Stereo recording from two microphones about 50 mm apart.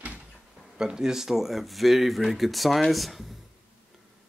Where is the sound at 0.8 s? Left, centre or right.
Centre.